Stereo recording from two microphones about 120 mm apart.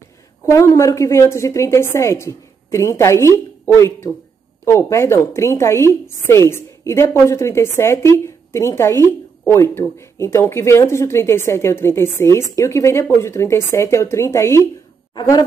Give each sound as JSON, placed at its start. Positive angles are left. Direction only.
{"t": 0.5, "sound": "speech", "side_deg": 25}